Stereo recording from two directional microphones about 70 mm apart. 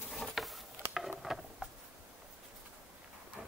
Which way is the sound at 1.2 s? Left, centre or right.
Centre.